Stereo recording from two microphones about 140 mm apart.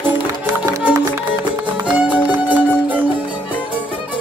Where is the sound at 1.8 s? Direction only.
10° right (ahead or behind).